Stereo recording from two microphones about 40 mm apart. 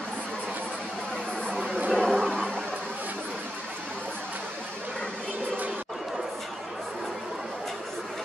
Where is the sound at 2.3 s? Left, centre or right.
Left.